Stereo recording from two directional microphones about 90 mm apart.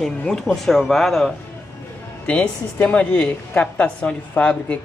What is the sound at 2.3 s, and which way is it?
A woman's voice, 15° left (ahead or behind).